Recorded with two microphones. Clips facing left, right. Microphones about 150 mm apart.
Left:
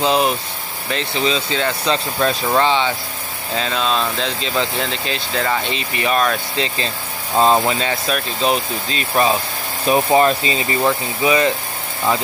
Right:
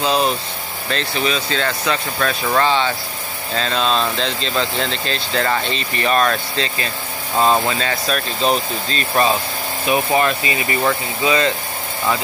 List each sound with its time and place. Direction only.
0.0 s speech: 20° left (ahead or behind)
7.3 s speech: 20° left (ahead or behind)
9.9 s speech: 30° left (ahead or behind)
10.8 s speech: 15° left (ahead or behind)